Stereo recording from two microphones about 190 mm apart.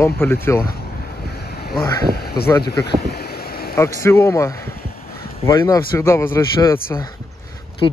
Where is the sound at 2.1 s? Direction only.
55° left (ahead or behind).